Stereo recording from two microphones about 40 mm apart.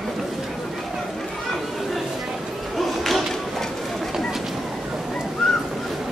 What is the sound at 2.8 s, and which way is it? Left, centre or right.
Thump, centre.